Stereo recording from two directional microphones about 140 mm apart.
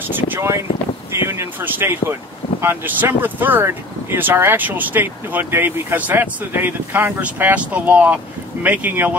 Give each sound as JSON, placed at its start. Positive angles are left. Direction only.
{"t": 0.0, "sound": "speech", "side_deg": -15}